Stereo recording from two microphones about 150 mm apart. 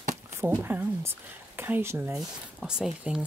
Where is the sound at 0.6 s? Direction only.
15° right (ahead or behind).